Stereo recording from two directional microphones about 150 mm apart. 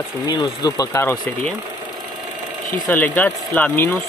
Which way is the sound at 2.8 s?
10° left (ahead or behind).